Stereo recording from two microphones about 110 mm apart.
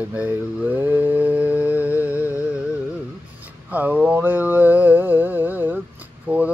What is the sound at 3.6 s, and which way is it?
Mantra, 15° right (ahead or behind).